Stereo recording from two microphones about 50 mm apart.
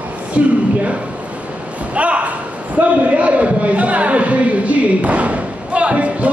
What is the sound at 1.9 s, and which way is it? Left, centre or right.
A man's voice, right.